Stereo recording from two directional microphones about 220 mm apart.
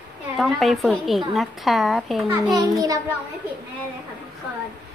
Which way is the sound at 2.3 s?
15° right (ahead or behind).